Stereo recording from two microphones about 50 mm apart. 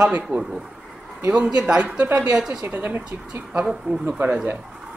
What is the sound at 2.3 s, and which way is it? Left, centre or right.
Speech, centre.